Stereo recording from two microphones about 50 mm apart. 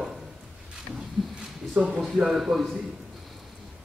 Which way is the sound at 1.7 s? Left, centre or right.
Right.